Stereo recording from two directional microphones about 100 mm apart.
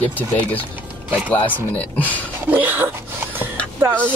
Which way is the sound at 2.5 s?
15° right (ahead or behind).